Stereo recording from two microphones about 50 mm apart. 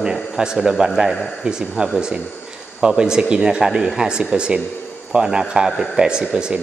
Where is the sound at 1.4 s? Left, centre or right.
Centre.